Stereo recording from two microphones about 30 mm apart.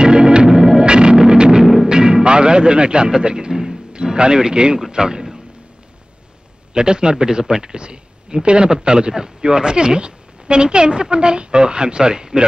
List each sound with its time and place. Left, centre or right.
0.0 s organ: right
0.5 s music: centre
0.8 s music: right
3.9 s a man's voice: right
6.7 s speech: right